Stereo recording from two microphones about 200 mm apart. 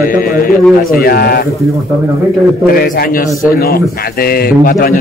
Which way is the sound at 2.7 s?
45° left (ahead or behind).